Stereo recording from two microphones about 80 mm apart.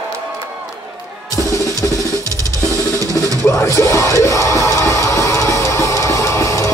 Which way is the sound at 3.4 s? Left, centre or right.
Left.